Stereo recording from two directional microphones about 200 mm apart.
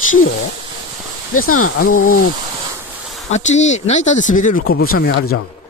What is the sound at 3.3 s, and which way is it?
A man's voice, 35° left (ahead or behind).